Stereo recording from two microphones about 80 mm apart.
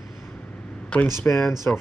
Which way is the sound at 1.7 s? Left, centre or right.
Left.